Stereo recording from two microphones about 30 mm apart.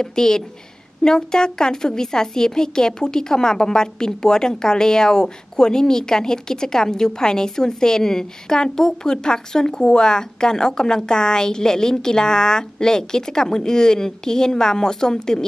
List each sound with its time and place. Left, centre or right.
0.0 s a woman's voice: left